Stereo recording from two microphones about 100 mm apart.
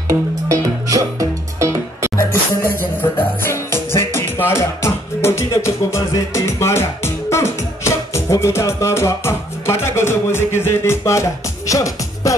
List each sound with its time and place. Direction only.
0.1 s music: 35° right (ahead or behind)
3.0 s music: 20° left (ahead or behind)